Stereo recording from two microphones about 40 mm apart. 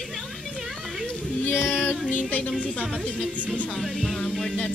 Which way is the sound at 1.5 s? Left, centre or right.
Left.